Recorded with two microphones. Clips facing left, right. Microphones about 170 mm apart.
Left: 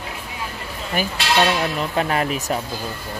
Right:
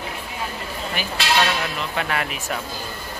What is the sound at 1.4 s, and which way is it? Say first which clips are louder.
Speech: left 7 dB; 35° left (ahead or behind).